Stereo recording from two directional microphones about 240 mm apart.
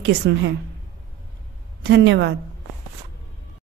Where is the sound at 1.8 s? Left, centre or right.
Right.